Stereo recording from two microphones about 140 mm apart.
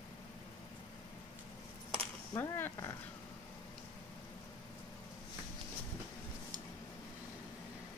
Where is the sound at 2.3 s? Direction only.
15° left (ahead or behind).